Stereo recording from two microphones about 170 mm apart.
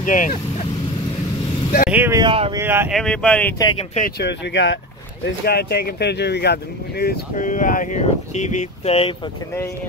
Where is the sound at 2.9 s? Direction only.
5° left (ahead or behind).